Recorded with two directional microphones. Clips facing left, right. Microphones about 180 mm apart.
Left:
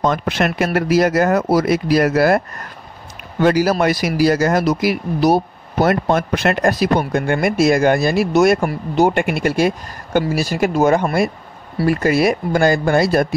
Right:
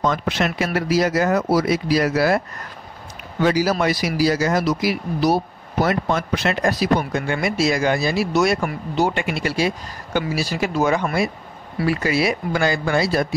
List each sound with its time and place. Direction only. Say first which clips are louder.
0.0 s speech: left 3 dB; 55° left (ahead or behind)